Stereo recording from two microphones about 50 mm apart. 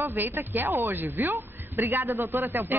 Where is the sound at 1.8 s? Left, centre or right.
Right.